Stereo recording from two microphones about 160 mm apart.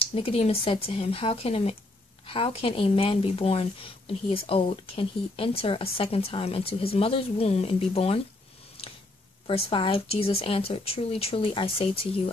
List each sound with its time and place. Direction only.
0.1 s speech: 35° left (ahead or behind)
9.5 s speech: 35° left (ahead or behind)